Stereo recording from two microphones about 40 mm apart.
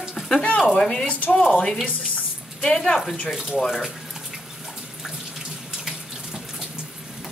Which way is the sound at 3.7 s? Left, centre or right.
Centre.